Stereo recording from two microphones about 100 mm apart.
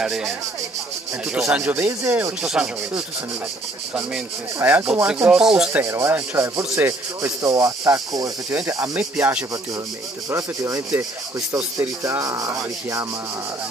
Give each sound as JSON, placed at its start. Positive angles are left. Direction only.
{"t": 0.0, "sound": "cricket", "side_deg": -5}
{"t": 1.3, "sound": "rub", "side_deg": -10}
{"t": 1.6, "sound": "speech", "side_deg": -20}
{"t": 2.4, "sound": "rub", "side_deg": -10}
{"t": 4.6, "sound": "rub", "side_deg": -20}
{"t": 5.7, "sound": "rub", "side_deg": -15}
{"t": 5.9, "sound": "speech", "side_deg": -25}
{"t": 8.5, "sound": "speech", "side_deg": -20}
{"t": 8.9, "sound": "rub", "side_deg": -15}
{"t": 10.3, "sound": "speech", "side_deg": -30}
{"t": 12.0, "sound": "speech", "side_deg": -35}